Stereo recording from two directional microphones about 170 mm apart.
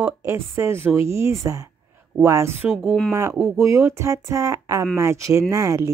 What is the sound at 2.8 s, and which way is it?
Speech, 5° left (ahead or behind).